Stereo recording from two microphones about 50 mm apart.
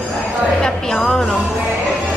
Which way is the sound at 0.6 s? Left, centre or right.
Centre.